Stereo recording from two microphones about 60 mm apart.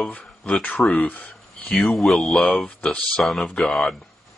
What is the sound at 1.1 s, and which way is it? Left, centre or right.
Speech, left.